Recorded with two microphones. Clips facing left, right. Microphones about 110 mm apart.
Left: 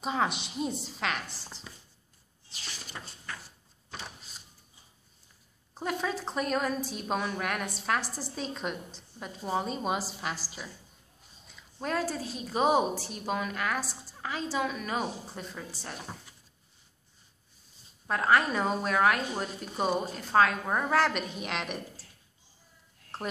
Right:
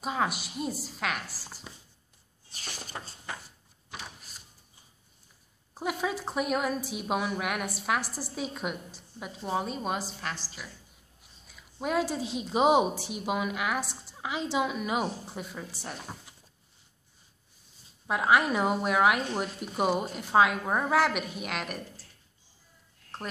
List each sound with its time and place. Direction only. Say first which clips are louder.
0.0 s a woman's voice: even; 5° right (ahead or behind)
2.5 s a sound: right 3 dB; 45° right (ahead or behind)
5.8 s a woman's voice: right 1 dB; 10° right (ahead or behind); by 10.5 s 5° left (ahead or behind)
11.4 s a woman's voice: right 2 dB; 10° right (ahead or behind)
18.0 s a woman's voice: right 1 dB; 10° right (ahead or behind)
23.1 s a sound: left 2 dB; 5° left (ahead or behind)